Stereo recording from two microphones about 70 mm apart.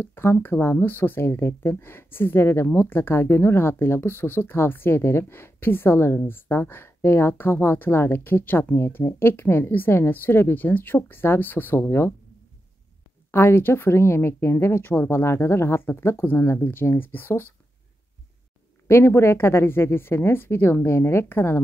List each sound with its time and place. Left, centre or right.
0.0 s speech: left
13.3 s speech: left
18.9 s speech: left